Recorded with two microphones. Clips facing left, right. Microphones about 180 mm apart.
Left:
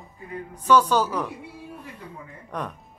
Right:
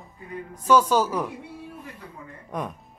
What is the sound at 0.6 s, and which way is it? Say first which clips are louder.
Speech: even; 10° right (ahead or behind).